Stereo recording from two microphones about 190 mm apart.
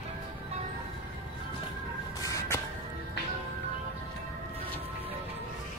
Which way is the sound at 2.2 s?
15° left (ahead or behind).